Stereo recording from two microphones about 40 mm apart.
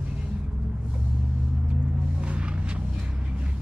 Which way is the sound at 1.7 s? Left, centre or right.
Right.